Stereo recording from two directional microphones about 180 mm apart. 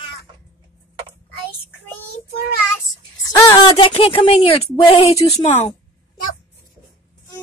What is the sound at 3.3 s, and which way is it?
Speech, 20° left (ahead or behind).